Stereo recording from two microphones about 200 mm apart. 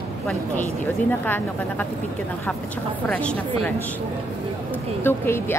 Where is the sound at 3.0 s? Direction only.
5° left (ahead or behind).